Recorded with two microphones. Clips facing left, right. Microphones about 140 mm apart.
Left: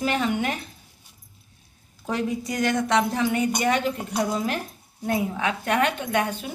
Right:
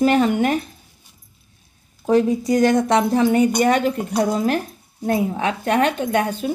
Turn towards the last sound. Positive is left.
turn(degrees=-35)  # may be behind; listen again after turning